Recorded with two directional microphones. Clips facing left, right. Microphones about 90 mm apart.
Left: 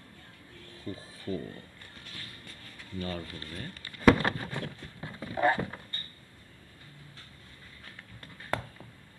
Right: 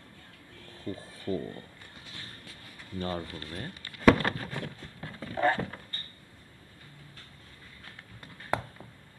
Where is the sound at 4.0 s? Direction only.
5° left (ahead or behind).